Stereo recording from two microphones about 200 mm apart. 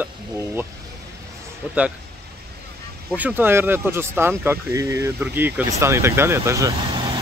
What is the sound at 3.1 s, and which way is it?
Speech, 10° right (ahead or behind).